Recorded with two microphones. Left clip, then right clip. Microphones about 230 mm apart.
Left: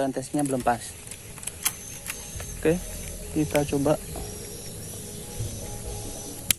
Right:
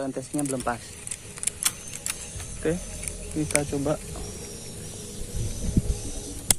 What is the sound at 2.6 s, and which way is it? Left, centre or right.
Speech, left.